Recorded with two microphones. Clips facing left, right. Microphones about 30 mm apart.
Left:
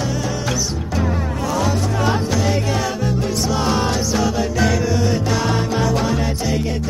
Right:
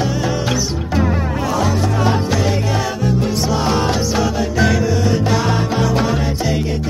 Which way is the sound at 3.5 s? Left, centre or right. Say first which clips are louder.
Right 1 dB; centre.